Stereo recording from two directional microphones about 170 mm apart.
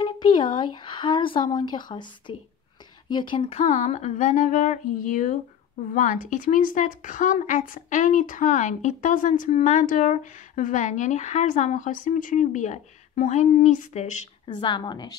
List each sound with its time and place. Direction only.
0.0 s a sound: 25° left (ahead or behind)
0.6 s a woman's voice: 30° left (ahead or behind); by 14.2 s 45° left (ahead or behind)
14.5 s speech: 25° left (ahead or behind)